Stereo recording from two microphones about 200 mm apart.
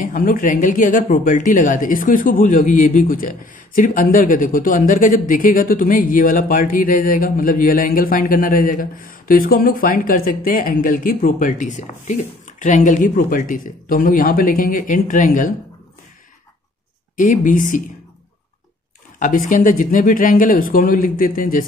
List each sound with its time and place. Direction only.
0.0 s speech: 45° left (ahead or behind)
17.2 s speech: 40° left (ahead or behind)
19.1 s speech: 40° left (ahead or behind)